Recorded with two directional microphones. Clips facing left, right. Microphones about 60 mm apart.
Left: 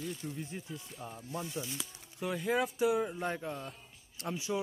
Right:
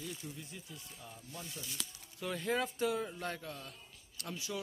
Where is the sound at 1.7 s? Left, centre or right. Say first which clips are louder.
Left 4 dB; centre.